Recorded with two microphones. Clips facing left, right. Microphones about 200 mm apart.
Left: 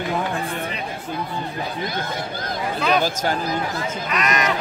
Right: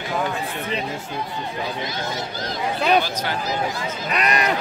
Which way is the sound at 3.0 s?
45° left (ahead or behind).